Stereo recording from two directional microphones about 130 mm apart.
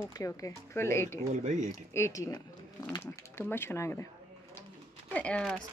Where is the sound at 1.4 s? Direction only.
70° right (ahead or behind).